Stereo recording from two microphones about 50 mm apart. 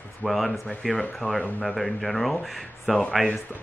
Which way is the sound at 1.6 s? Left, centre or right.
Centre.